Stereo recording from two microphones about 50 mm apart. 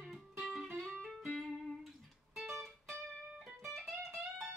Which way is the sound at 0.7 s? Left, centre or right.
Centre.